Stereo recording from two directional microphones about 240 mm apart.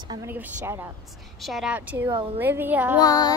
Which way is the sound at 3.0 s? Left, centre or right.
Centre.